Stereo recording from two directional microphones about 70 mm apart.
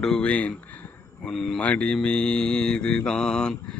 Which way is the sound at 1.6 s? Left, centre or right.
Centre.